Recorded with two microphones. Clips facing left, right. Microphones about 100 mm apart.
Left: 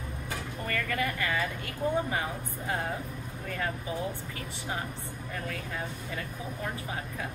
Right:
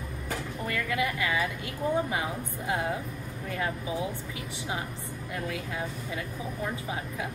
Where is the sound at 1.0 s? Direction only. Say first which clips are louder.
Right 2 dB; 10° right (ahead or behind).